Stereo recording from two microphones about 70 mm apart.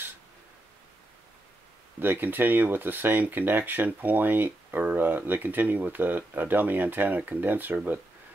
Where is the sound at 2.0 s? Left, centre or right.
Right.